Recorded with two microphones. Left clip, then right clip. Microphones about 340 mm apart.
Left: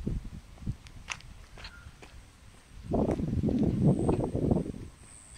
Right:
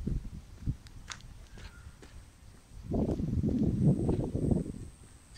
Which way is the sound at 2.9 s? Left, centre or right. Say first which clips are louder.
Left 4 dB; left.